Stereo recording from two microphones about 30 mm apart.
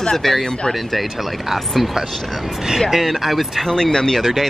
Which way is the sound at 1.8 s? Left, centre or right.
Centre.